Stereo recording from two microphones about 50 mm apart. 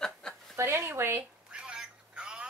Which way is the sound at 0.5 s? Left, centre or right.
Right.